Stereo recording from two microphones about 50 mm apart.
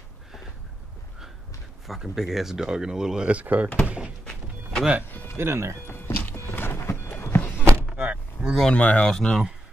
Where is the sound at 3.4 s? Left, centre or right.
Right.